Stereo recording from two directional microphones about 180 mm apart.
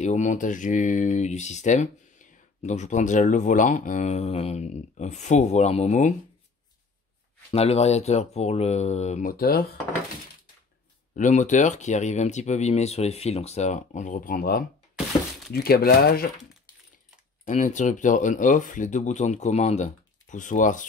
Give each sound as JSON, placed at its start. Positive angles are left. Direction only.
{"t": 0.0, "sound": "speech", "side_deg": 40}
{"t": 7.5, "sound": "speech", "side_deg": 35}
{"t": 11.1, "sound": "speech", "side_deg": 45}
{"t": 17.5, "sound": "speech", "side_deg": 45}